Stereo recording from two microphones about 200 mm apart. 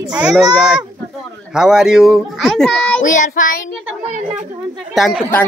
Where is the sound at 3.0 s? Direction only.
40° left (ahead or behind).